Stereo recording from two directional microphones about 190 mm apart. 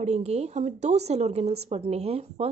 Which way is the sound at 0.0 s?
35° right (ahead or behind).